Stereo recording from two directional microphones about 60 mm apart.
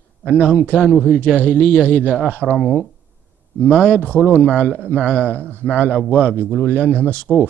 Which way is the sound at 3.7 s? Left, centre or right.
Centre.